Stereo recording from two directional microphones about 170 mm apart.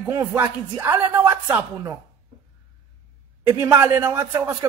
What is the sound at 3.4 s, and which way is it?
A man's voice, 15° right (ahead or behind).